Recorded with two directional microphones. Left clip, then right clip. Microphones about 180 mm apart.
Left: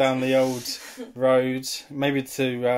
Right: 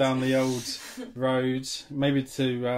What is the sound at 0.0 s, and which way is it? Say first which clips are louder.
Speech: left 4 dB; 45° left (ahead or behind).